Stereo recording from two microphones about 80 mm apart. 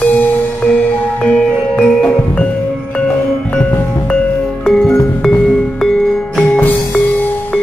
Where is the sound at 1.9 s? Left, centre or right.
Centre.